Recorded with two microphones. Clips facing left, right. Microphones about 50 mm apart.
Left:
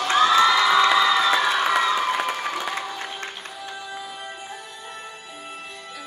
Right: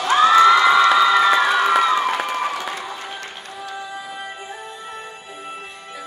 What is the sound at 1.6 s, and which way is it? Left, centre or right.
Crowd, centre.